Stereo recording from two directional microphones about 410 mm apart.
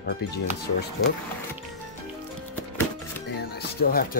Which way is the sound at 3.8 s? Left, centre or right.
Left.